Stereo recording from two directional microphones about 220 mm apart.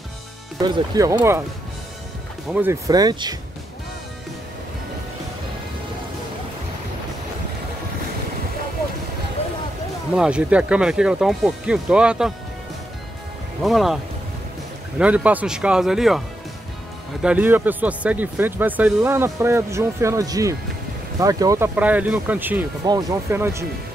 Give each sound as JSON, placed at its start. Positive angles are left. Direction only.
{"t": 0.6, "sound": "speech", "side_deg": -15}
{"t": 2.5, "sound": "speech", "side_deg": -10}
{"t": 10.1, "sound": "speech", "side_deg": -5}
{"t": 13.6, "sound": "speech", "side_deg": 0}
{"t": 15.0, "sound": "speech", "side_deg": -5}
{"t": 17.2, "sound": "speech", "side_deg": -5}